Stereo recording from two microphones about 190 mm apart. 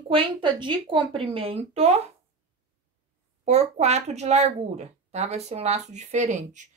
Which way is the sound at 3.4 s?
35° right (ahead or behind).